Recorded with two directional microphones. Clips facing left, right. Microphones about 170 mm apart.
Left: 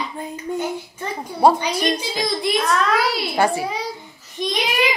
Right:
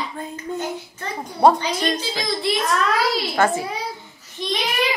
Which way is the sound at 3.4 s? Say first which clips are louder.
Left 1 dB; 15° left (ahead or behind).